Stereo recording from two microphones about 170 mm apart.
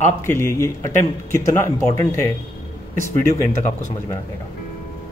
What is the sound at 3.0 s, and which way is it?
Speech, 50° right (ahead or behind).